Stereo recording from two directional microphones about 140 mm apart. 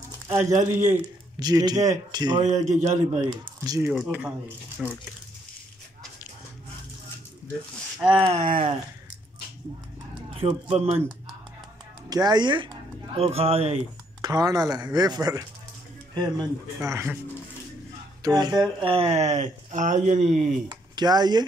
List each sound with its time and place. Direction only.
0.4 s a man's voice: 55° right (ahead or behind)
1.4 s speech: 30° right (ahead or behind)
2.5 s a man's voice: 55° right (ahead or behind)
3.2 s speech: 25° right (ahead or behind)
3.9 s speech: 5° right (ahead or behind)
8.1 s speech: 40° right (ahead or behind)
8.4 s a man's voice: 65° right (ahead or behind)
10.3 s speech: 40° right (ahead or behind)
12.1 s speech: 30° right (ahead or behind); by 13.8 s 45° right (ahead or behind)
14.2 s speech: 25° right (ahead or behind)
18.2 s speech: 30° right (ahead or behind); by 20.5 s 55° right (ahead or behind)
20.6 s speech: 30° right (ahead or behind)